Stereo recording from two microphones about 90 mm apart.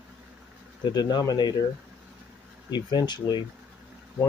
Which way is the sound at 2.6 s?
55° left (ahead or behind).